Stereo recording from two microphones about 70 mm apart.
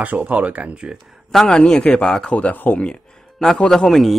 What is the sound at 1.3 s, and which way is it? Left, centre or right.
A man's voice, centre.